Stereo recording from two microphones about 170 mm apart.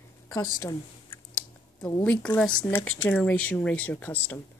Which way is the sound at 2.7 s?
15° left (ahead or behind).